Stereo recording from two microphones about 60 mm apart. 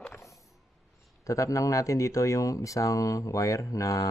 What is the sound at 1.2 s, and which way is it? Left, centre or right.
Speech, left.